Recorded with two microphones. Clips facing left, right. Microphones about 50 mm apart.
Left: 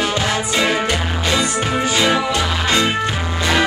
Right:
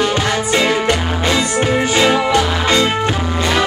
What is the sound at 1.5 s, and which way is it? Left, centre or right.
Music, right.